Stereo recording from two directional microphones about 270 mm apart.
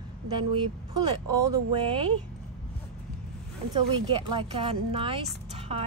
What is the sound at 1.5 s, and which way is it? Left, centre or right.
Speech, centre.